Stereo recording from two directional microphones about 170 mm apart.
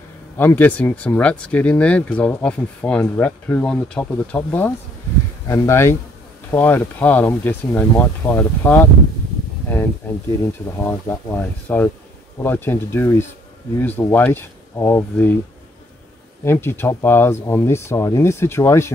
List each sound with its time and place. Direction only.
0.4 s speech: 10° left (ahead or behind)
10.8 s speech: 15° left (ahead or behind)
16.4 s speech: 15° left (ahead or behind)